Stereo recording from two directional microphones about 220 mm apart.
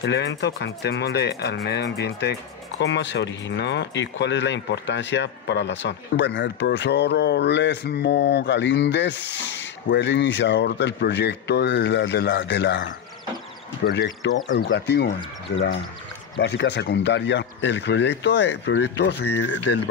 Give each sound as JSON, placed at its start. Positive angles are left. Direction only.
{"t": 0.0, "sound": "speech", "side_deg": 50}